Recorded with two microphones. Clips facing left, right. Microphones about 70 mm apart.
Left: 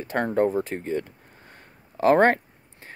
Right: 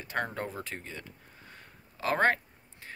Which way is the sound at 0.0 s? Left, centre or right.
Left.